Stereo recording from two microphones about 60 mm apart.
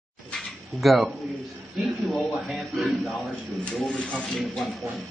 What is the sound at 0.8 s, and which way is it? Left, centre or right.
Speech, centre.